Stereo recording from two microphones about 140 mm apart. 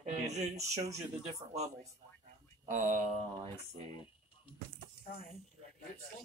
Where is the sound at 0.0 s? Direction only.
55° right (ahead or behind).